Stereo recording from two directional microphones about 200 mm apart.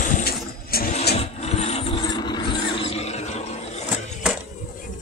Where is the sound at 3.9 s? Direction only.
5° right (ahead or behind).